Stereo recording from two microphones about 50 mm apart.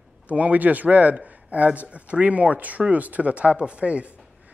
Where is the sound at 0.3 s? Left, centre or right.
Right.